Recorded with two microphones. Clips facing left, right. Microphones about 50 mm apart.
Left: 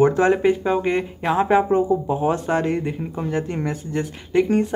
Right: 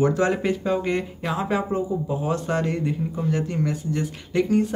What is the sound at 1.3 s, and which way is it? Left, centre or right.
Speech, left.